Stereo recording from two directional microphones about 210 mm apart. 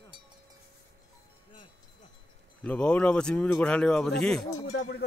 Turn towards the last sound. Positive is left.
turn(degrees=50)  # may be behind; listen again after turning